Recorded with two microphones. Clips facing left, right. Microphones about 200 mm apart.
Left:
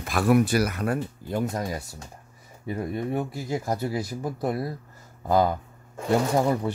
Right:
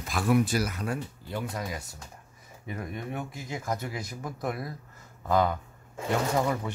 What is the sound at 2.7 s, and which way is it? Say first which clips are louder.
Speech: left 7 dB; 30° left (ahead or behind).